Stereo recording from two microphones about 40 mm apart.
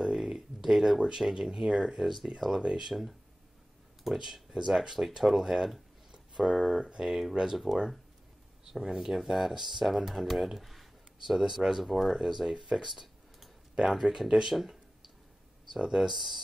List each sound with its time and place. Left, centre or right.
0.0 s a sound: centre
1.0 s speech: right
4.0 s speech: centre
11.3 s speech: centre
12.7 s a sound: centre
13.7 s speech: centre
16.0 s speech: centre